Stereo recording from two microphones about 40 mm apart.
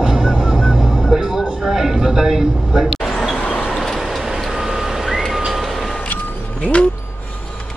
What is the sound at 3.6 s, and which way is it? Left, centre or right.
Vehicle, centre.